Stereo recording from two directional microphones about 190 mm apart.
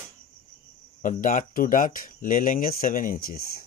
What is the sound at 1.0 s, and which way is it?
Speech, 45° left (ahead or behind).